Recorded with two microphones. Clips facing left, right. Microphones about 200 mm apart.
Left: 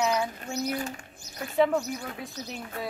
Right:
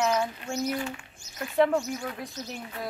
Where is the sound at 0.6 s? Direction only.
40° left (ahead or behind).